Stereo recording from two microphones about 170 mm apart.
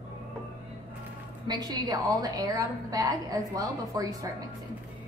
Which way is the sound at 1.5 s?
25° right (ahead or behind).